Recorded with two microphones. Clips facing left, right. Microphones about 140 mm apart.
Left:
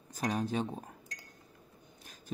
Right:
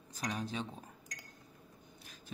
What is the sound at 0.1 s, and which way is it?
Speech, 45° left (ahead or behind).